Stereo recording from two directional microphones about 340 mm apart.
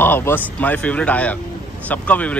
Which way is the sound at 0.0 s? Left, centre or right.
Centre.